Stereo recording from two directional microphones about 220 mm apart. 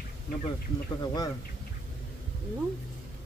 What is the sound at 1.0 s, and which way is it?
Speech, 15° left (ahead or behind).